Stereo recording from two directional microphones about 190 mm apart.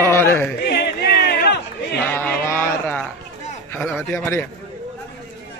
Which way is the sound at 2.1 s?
15° left (ahead or behind).